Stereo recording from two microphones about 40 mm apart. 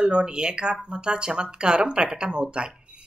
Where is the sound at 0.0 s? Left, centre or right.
Right.